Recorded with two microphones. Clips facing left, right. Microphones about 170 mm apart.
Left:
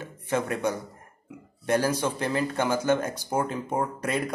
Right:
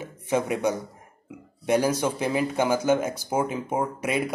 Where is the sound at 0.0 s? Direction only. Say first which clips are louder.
Right 2 dB; 10° right (ahead or behind).